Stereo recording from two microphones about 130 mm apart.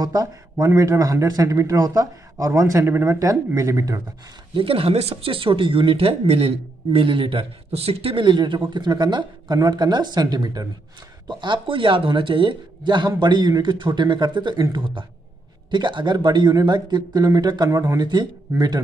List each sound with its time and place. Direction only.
0.0 s a man's voice: 30° right (ahead or behind)
4.6 s speech: 45° right (ahead or behind)